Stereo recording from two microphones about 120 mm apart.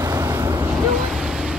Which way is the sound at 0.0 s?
25° right (ahead or behind).